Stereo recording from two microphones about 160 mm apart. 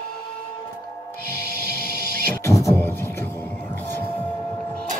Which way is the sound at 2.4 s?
20° left (ahead or behind).